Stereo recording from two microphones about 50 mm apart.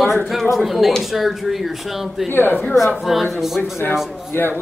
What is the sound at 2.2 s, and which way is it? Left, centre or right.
Speech, left.